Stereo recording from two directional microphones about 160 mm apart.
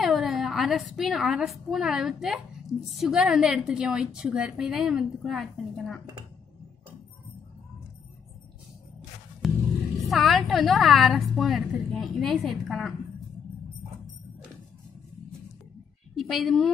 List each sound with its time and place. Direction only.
0.0 s a woman's voice: centre (ahead or behind)
9.4 s a sound: centre (ahead or behind)
10.0 s a woman's voice: centre (ahead or behind)
16.2 s a woman's voice: centre (ahead or behind)